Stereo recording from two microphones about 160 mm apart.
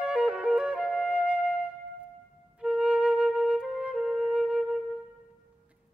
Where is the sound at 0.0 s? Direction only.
5° right (ahead or behind).